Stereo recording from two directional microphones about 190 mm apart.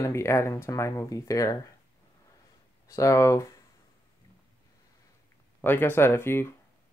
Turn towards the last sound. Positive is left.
turn(degrees=10)  # may be behind; listen again after turning